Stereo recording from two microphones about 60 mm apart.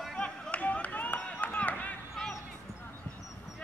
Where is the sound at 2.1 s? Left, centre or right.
Centre.